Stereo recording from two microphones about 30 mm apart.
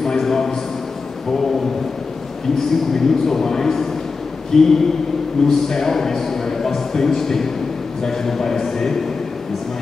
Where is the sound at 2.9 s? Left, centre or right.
Centre.